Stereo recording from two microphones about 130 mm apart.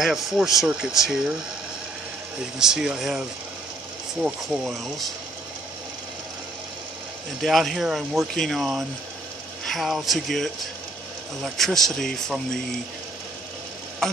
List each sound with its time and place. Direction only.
0.0 s speech: 5° right (ahead or behind)
2.6 s speech: 5° right (ahead or behind)
7.4 s speech: centre (ahead or behind)